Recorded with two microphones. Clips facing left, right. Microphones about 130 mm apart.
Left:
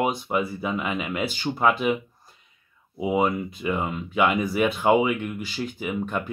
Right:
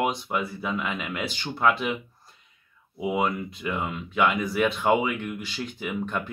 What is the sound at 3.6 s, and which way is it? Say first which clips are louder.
Speech: left 3 dB; 15° left (ahead or behind).